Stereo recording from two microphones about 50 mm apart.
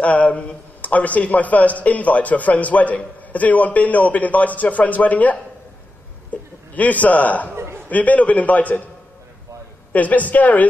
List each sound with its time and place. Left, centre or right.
0.0 s a man's voice: left
7.5 s chuckle: right
7.9 s a man's voice: left
9.9 s a man's voice: left